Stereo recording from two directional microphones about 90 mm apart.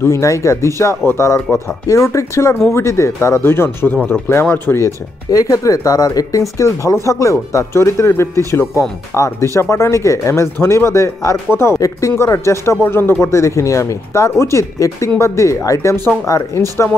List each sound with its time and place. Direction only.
0.0 s speech: 35° left (ahead or behind)